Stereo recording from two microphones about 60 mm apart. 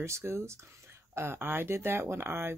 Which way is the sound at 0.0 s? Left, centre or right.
Right.